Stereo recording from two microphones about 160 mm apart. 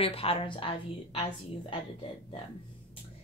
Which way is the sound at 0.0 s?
35° left (ahead or behind).